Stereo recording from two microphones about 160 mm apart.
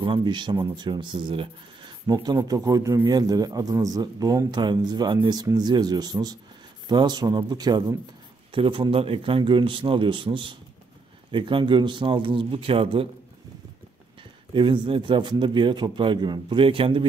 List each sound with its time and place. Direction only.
0.0 s a man's voice: 30° right (ahead or behind)
14.5 s a man's voice: 30° right (ahead or behind)